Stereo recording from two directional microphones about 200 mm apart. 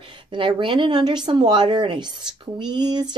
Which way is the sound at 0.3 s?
25° right (ahead or behind).